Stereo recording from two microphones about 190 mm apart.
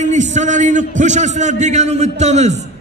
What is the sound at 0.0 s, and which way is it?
A man's voice, 40° right (ahead or behind).